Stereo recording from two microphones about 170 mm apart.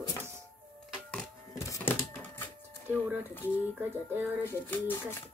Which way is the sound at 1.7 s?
10° left (ahead or behind).